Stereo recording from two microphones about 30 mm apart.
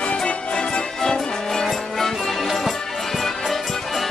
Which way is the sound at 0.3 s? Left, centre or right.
Left.